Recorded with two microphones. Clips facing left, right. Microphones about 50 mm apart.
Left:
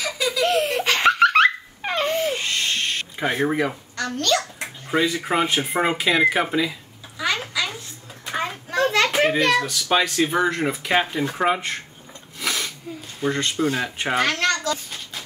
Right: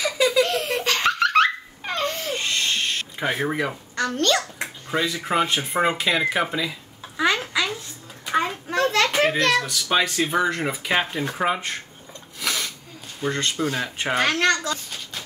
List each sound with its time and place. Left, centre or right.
0.4 s laughter: centre
2.3 s a sound: centre
3.9 s babbling: right
4.9 s speech: centre
7.2 s a sound: right
8.7 s a child's voice: centre
12.4 s sneeze: centre
13.2 s speech: centre
14.2 s a child's voice: right